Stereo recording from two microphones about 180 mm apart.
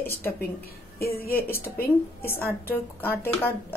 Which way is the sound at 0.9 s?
55° left (ahead or behind).